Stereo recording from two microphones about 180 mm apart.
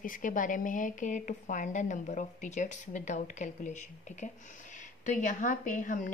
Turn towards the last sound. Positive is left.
turn(degrees=45)  # may be behind; listen again after turning